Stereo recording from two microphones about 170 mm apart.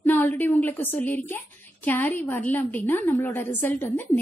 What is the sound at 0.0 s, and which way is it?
A woman's voice, 10° left (ahead or behind).